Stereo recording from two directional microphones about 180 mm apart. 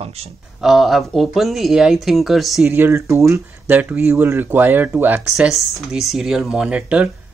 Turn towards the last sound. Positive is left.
turn(degrees=-5)  # may be behind; listen again after turning